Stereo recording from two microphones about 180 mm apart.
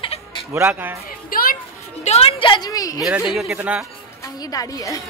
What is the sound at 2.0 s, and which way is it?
A woman's voice, 35° left (ahead or behind).